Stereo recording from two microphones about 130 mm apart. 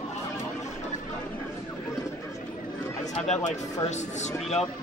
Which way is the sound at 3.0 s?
60° left (ahead or behind).